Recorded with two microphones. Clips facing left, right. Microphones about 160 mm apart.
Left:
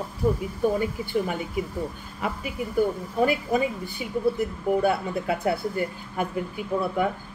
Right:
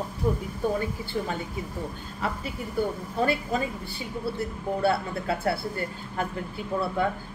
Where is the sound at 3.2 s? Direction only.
15° left (ahead or behind).